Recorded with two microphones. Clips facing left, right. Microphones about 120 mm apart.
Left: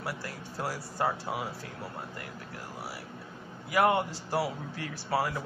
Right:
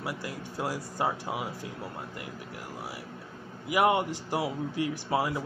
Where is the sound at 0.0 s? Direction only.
15° right (ahead or behind).